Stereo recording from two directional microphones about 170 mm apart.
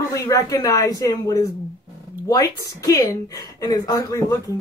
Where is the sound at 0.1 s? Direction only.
20° left (ahead or behind).